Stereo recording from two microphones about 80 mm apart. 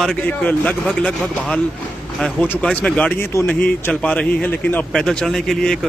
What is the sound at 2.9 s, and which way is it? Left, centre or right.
Speech, centre.